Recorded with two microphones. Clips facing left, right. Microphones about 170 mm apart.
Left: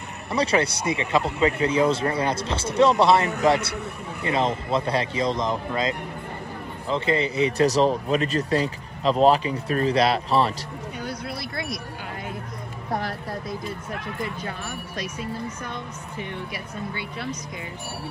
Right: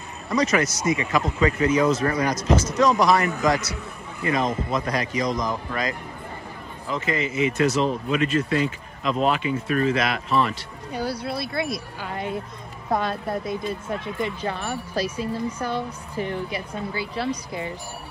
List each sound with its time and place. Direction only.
0.3 s speech: 30° left (ahead or behind)
11.0 s speech: 30° right (ahead or behind)
13.0 s speech: 25° right (ahead or behind)
15.6 s a woman's voice: 35° right (ahead or behind)